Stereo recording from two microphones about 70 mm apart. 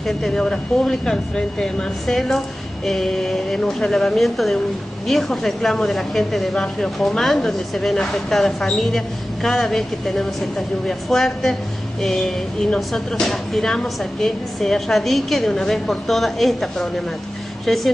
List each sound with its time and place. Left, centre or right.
0.0 s speech: centre